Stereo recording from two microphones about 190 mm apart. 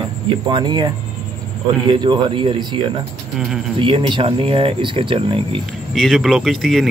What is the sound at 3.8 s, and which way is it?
Speech, 25° right (ahead or behind).